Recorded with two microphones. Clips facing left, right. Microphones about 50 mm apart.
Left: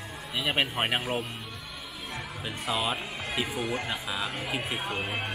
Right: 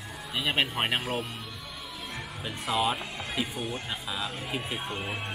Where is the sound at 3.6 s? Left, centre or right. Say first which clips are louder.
Left 4 dB; left.